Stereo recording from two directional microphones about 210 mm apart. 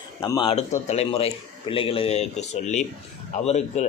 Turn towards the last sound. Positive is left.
turn(degrees=30)  # may be behind; listen again after turning